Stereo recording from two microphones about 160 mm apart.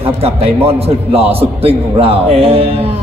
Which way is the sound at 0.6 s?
40° right (ahead or behind).